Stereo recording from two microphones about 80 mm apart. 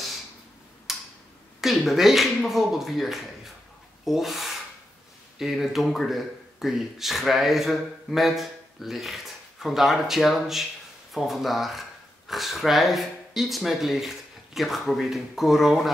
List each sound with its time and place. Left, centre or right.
0.9 s tick-tock: centre
1.6 s speech: centre